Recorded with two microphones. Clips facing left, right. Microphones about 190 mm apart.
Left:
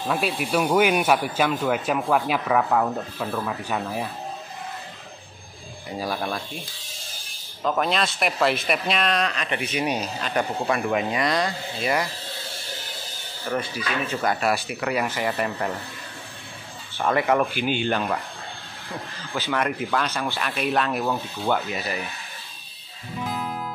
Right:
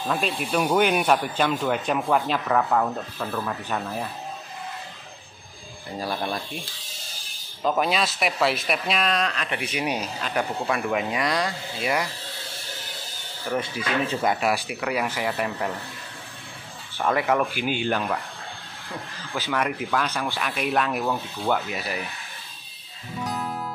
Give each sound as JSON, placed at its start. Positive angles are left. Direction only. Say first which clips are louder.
{"t": 0.0, "sound": "speech", "louder": "left 1 dB", "side_deg": 5}
{"t": 5.9, "sound": "speech", "louder": "left 1 dB", "side_deg": 10}
{"t": 6.2, "sound": "speech", "louder": "even", "side_deg": -5}
{"t": 7.6, "sound": "speech", "louder": "even", "side_deg": -5}
{"t": 13.6, "sound": "speech", "louder": "right 3 dB", "side_deg": -25}
{"t": 14.3, "sound": "speech", "louder": "even", "side_deg": -10}
{"t": 17.0, "sound": "speech", "louder": "left 1 dB", "side_deg": 0}
{"t": 19.3, "sound": "speech", "louder": "left 1 dB", "side_deg": -5}
{"t": 23.1, "sound": "music", "louder": "even", "side_deg": 10}